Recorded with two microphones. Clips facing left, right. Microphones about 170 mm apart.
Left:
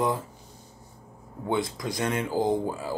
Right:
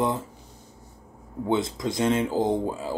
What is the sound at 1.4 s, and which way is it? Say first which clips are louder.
Speech: right 3 dB; 25° right (ahead or behind).